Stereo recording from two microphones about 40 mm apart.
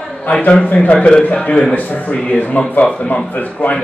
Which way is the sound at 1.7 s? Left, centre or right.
Left.